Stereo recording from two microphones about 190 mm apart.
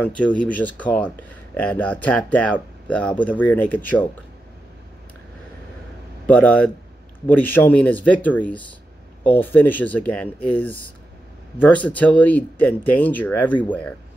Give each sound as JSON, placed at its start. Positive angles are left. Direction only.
{"t": 0.0, "sound": "speech", "side_deg": 5}
{"t": 6.2, "sound": "speech", "side_deg": 10}